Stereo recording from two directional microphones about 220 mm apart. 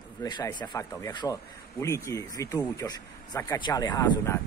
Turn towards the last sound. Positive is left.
turn(degrees=15)  # may be behind; listen again after turning